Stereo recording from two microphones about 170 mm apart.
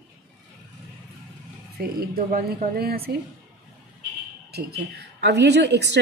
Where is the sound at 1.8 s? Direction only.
60° right (ahead or behind).